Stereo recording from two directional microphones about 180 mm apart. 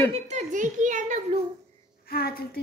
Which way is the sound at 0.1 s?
40° right (ahead or behind).